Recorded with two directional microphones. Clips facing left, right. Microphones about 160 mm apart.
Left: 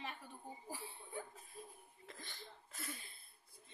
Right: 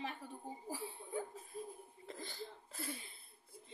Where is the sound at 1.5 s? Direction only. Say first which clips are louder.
Right 8 dB; 45° right (ahead or behind).